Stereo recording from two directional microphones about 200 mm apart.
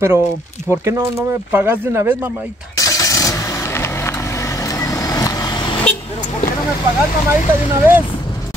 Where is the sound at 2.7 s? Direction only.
15° left (ahead or behind).